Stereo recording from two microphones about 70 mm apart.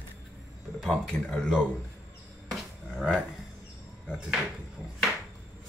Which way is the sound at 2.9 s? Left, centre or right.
Centre.